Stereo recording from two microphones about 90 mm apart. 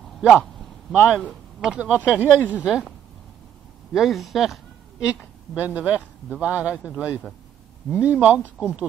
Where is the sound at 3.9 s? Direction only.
Centre (ahead or behind).